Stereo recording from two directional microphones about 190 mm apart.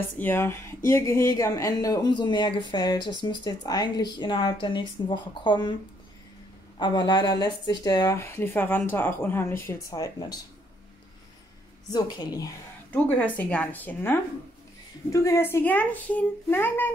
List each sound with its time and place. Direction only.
0.2 s speech: 10° left (ahead or behind)
6.8 s speech: 20° left (ahead or behind)
11.9 s speech: 20° left (ahead or behind)
12.9 s speech: 10° left (ahead or behind)
15.2 s speech: 15° left (ahead or behind)